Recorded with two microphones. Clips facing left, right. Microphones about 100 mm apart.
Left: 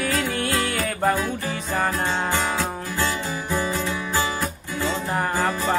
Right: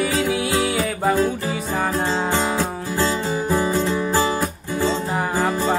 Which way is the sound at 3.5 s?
35° right (ahead or behind).